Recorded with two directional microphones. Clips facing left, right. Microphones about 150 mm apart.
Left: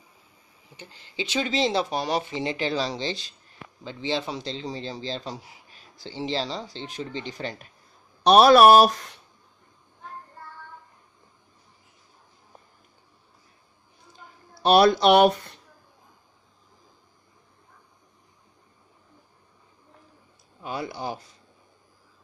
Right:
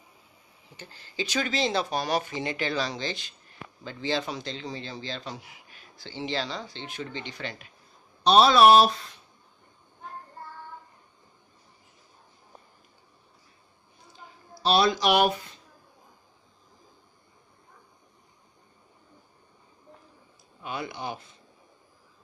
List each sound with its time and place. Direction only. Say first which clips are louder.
0.7 s a man's voice: even; 20° left (ahead or behind); by 7.6 s 40° left (ahead or behind)
8.2 s speech: left 4 dB; 65° left (ahead or behind)
14.5 s speech: left 6 dB; 60° left (ahead or behind)